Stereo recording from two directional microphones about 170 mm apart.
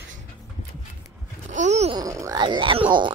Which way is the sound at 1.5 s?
45° right (ahead or behind).